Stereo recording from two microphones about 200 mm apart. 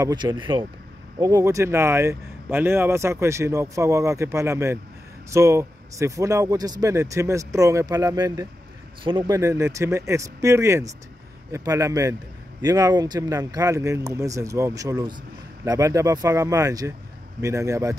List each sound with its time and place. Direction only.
0.0 s speech: 20° right (ahead or behind)